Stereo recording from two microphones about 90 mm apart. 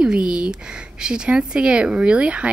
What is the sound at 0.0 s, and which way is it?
Speech, 10° right (ahead or behind).